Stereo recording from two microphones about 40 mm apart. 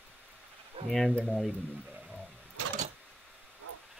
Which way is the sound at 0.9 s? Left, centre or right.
Centre.